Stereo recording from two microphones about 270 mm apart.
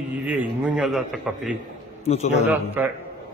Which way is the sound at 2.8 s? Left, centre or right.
Centre.